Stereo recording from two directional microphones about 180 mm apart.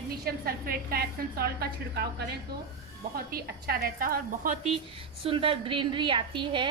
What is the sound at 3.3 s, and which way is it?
A woman's voice, 55° right (ahead or behind).